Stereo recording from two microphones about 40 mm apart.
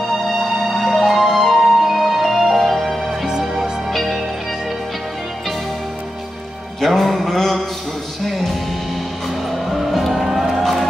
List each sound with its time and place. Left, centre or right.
0.7 s music: centre
3.3 s music: centre
3.9 s music: centre
6.8 s music: centre
9.5 s music: centre